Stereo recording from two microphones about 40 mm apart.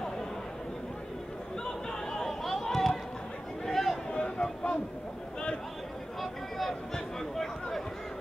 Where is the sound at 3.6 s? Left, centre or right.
Centre.